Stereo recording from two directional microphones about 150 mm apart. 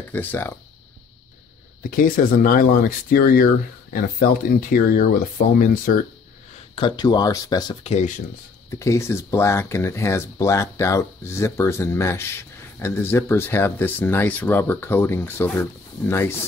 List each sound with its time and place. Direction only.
0.1 s speech: 10° left (ahead or behind)
1.8 s speech: 70° left (ahead or behind)
6.7 s speech: 30° left (ahead or behind)
7.8 s speech: 50° left (ahead or behind)
8.6 s speech: 20° left (ahead or behind)